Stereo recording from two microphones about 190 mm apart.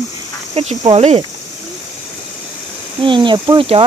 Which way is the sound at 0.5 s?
30° right (ahead or behind).